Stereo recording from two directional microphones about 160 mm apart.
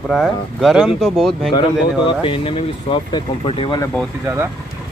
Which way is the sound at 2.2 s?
35° left (ahead or behind).